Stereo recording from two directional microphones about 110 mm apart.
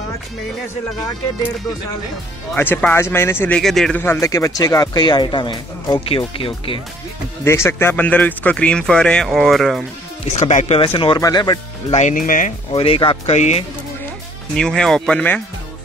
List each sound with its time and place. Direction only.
2.5 s speech: 15° left (ahead or behind)
3.5 s speech: 5° left (ahead or behind)
3.9 s speech: 20° left (ahead or behind); by 6.8 s 55° left (ahead or behind)
7.4 s speech: 25° left (ahead or behind); by 9.8 s centre (ahead or behind)
10.3 s speech: 90° left
10.8 s speech: 50° left (ahead or behind)
11.1 s speech: 35° left (ahead or behind)
12.7 s speech: 55° left (ahead or behind)
13.3 s speech: 90° left
14.5 s speech: 5° left (ahead or behind)